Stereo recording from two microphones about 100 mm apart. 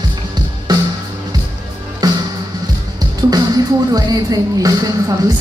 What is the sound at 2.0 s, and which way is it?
Music, 40° right (ahead or behind).